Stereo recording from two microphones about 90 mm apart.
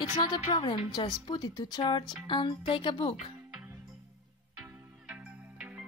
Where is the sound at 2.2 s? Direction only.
70° left (ahead or behind).